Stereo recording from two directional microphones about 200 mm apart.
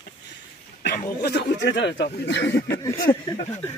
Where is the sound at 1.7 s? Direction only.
60° left (ahead or behind).